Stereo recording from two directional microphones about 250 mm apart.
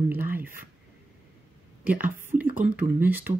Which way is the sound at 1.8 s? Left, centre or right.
Centre.